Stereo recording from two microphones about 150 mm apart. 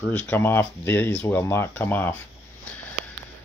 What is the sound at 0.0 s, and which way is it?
Speech, 10° left (ahead or behind).